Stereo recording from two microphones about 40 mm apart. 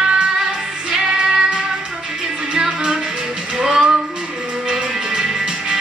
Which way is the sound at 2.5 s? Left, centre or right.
Centre.